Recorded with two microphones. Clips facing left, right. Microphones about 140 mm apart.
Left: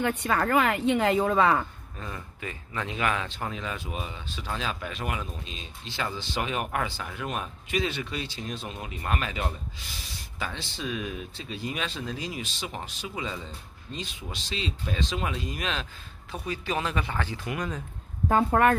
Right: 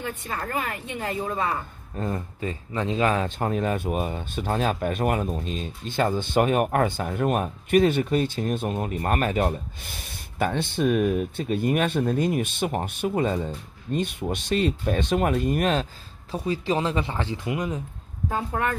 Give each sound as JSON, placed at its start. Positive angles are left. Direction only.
{"t": 0.0, "sound": "a woman's voice", "side_deg": 75}
{"t": 2.0, "sound": "speech", "side_deg": -45}
{"t": 2.4, "sound": "speech", "side_deg": -30}
{"t": 3.3, "sound": "speech", "side_deg": -50}
{"t": 18.3, "sound": "speech", "side_deg": 60}